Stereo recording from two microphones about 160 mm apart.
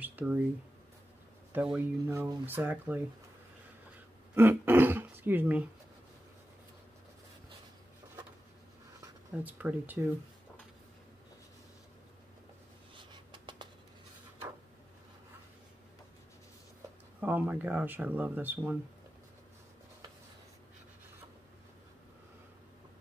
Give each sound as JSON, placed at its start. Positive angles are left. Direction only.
{"t": 0.0, "sound": "a sound", "side_deg": -10}
{"t": 1.5, "sound": "speech", "side_deg": -10}
{"t": 4.4, "sound": "throat clearing", "side_deg": -15}
{"t": 9.4, "sound": "speech", "side_deg": -10}
{"t": 12.9, "sound": "a sound", "side_deg": -30}
{"t": 17.2, "sound": "speech", "side_deg": -10}